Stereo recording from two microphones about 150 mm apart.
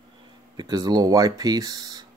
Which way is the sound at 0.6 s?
25° right (ahead or behind).